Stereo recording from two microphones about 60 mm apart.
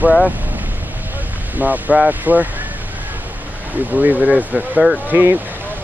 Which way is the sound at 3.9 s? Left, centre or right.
Right.